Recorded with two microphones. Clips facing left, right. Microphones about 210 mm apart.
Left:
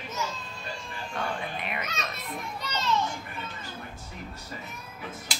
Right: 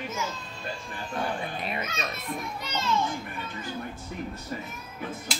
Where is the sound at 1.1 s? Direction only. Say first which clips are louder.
Right 2 dB; 35° right (ahead or behind).